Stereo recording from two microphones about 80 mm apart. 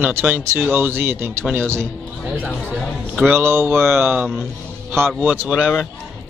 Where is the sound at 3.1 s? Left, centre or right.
Centre.